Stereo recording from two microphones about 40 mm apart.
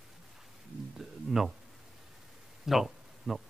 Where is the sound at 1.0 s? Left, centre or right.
Centre.